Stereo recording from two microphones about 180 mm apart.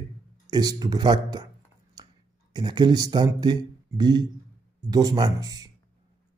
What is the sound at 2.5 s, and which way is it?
Speech, 25° right (ahead or behind).